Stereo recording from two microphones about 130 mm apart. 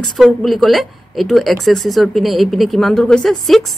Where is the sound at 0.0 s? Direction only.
Centre (ahead or behind).